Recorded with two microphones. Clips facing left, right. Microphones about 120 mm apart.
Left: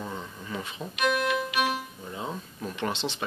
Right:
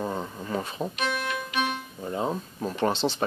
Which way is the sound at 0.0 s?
40° right (ahead or behind).